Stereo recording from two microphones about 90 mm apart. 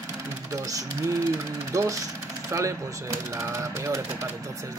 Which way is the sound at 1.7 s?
40° right (ahead or behind).